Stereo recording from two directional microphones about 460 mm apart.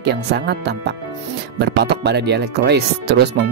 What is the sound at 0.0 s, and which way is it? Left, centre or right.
Speech, right.